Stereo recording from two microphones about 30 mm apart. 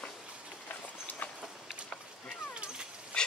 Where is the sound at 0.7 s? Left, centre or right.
Left.